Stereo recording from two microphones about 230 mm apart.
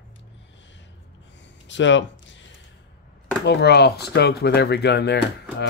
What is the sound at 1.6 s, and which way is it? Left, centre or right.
Speech, left.